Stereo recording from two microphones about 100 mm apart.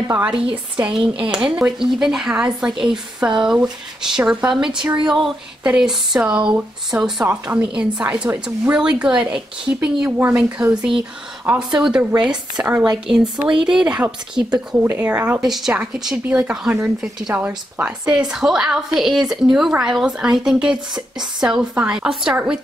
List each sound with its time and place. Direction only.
0.1 s a woman's voice: 10° right (ahead or behind)
13.2 s speech: 55° right (ahead or behind)
13.7 s a woman's voice: 10° right (ahead or behind)